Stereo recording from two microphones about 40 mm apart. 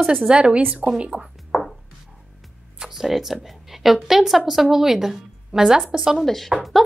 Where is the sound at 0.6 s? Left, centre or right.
Right.